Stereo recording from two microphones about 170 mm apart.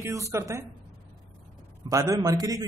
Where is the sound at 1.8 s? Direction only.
20° right (ahead or behind).